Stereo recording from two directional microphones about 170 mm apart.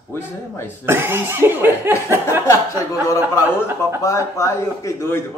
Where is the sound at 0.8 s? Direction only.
15° right (ahead or behind).